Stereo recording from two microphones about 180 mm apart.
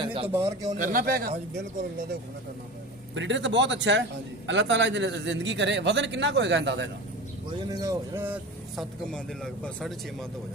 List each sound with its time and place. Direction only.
0.0 s a sound: 30° right (ahead or behind)
0.3 s speech: 15° right (ahead or behind)
0.7 s speech: 50° right (ahead or behind)
3.2 s a man's voice: 90° right
7.7 s speech: 20° right (ahead or behind)
9.1 s speech: 5° left (ahead or behind)